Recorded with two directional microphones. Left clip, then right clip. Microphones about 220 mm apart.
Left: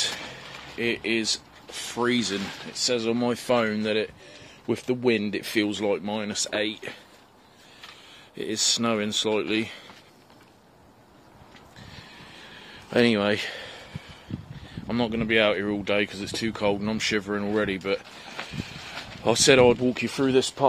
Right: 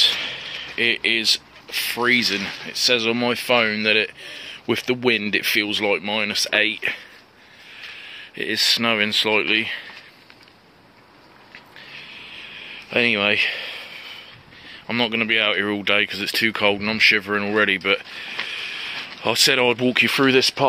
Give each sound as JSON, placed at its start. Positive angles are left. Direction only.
{"t": 0.7, "sound": "speech", "side_deg": 0}
{"t": 8.1, "sound": "speech", "side_deg": 5}
{"t": 12.9, "sound": "speech", "side_deg": 20}
{"t": 14.9, "sound": "speech", "side_deg": 15}
{"t": 17.2, "sound": "speech", "side_deg": 0}